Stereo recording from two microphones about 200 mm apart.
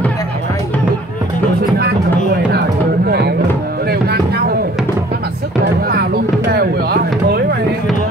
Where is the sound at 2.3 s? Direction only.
50° right (ahead or behind).